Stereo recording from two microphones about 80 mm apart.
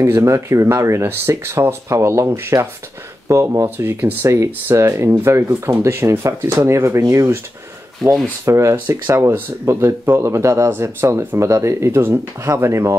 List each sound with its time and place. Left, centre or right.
0.0 s speech: right
3.7 s speech: right
8.5 s speech: right